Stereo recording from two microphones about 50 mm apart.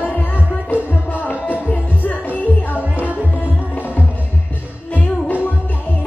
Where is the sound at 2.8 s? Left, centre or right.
Right.